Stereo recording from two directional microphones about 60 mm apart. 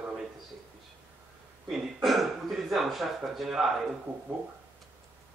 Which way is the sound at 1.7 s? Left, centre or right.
Centre.